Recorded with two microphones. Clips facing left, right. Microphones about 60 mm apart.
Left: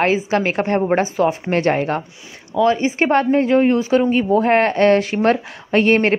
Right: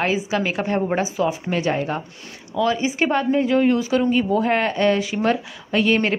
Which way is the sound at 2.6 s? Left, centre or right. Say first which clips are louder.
Left 4 dB; left.